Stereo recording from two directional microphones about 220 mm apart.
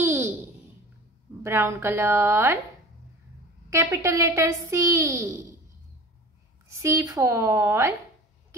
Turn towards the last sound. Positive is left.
turn(degrees=-10)  # may be behind; listen again after turning